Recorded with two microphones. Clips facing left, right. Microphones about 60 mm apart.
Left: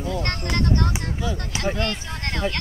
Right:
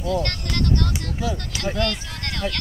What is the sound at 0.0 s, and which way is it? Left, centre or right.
Speech, left.